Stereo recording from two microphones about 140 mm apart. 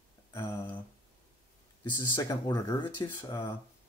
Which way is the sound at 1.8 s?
25° left (ahead or behind).